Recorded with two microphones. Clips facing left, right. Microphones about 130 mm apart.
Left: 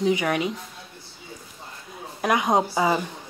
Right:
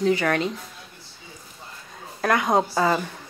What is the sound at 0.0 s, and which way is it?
Speech, 15° left (ahead or behind).